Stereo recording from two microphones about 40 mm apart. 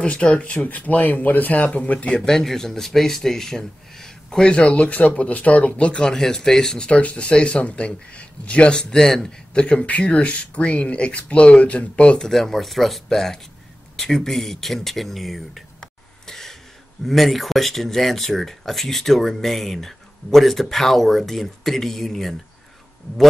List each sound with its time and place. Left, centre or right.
0.0 s speech: left
0.7 s speech: left
2.2 s speech: centre
4.5 s speech: left
6.0 s speech: centre
6.9 s speech: left
8.9 s speech: centre
9.5 s speech: left
12.0 s speech: left
12.3 s speech: centre
15.8 s a sound: centre
17.0 s speech: centre